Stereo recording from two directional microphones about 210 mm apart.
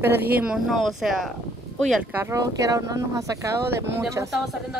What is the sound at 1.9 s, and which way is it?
Speech, 10° right (ahead or behind).